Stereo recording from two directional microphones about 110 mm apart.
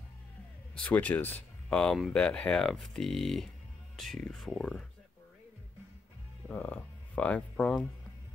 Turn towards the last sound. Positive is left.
turn(degrees=10)  # may be behind; listen again after turning